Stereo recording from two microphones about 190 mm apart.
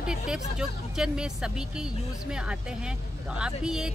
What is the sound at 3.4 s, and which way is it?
Speech, 5° right (ahead or behind).